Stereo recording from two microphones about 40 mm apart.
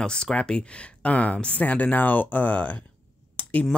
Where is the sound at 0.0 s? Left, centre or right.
Left.